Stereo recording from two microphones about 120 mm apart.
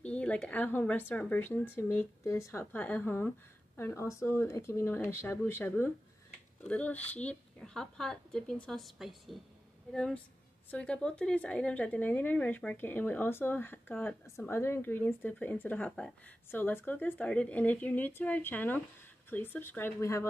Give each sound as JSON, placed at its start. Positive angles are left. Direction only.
{"t": 0.0, "sound": "a woman's voice", "side_deg": 10}